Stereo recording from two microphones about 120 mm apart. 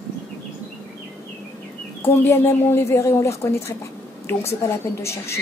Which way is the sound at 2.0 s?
20° left (ahead or behind).